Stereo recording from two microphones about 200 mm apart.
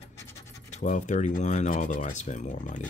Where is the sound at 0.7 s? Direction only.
40° left (ahead or behind).